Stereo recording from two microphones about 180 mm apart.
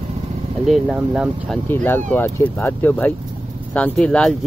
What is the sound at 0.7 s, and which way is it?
Speech, centre (ahead or behind).